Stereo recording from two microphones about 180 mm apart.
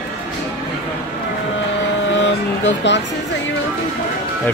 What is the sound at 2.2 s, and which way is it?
Speech, 85° left.